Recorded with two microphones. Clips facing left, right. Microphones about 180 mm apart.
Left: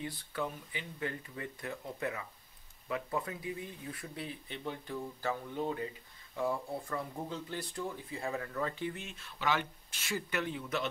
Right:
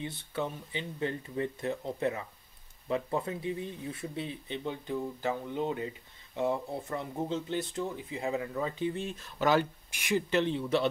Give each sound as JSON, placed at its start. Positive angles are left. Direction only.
{"t": 0.0, "sound": "speech", "side_deg": -25}
{"t": 8.9, "sound": "speech", "side_deg": -35}
{"t": 9.8, "sound": "speech", "side_deg": -15}
{"t": 10.3, "sound": "speech", "side_deg": -25}